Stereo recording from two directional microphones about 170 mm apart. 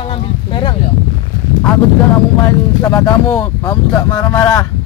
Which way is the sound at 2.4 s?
15° left (ahead or behind).